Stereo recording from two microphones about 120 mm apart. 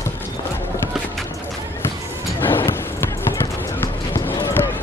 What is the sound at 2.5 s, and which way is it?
Music, 20° left (ahead or behind).